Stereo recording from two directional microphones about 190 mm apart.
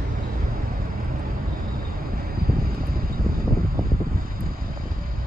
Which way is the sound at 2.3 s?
50° right (ahead or behind).